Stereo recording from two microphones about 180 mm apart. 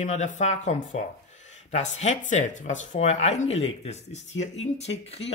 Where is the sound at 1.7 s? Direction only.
40° left (ahead or behind).